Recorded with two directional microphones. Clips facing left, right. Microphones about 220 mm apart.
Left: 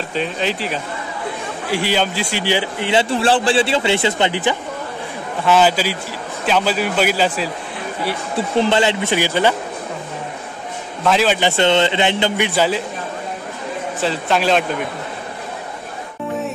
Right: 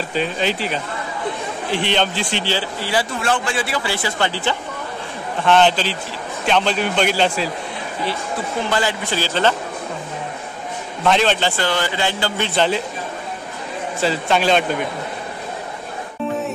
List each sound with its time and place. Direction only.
0.1 s a man's voice: centre (ahead or behind); by 4.6 s 20° left (ahead or behind)
5.4 s a man's voice: 5° left (ahead or behind)
8.5 s a man's voice: 25° left (ahead or behind)
11.1 s a man's voice: 5° left (ahead or behind)
11.5 s a man's voice: 25° left (ahead or behind); by 12.8 s 5° left (ahead or behind)
14.0 s a man's voice: centre (ahead or behind)